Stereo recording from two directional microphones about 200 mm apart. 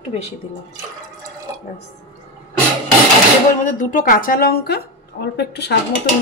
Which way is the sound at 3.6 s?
40° left (ahead or behind).